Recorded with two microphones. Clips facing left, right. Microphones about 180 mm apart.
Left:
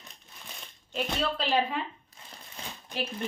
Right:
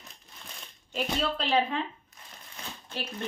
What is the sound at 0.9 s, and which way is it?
Speech, centre (ahead or behind).